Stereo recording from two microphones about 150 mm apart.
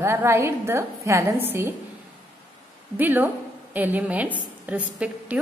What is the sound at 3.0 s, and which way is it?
A woman's voice, 10° right (ahead or behind).